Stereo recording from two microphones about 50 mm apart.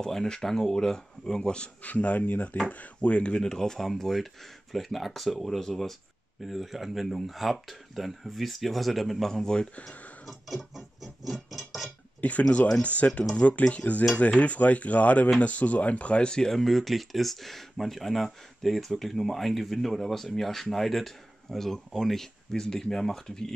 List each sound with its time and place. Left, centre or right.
0.0 s speech: centre
10.2 s a sound: centre
12.2 s cutlery: left
15.4 s speech: left; by 23.5 s centre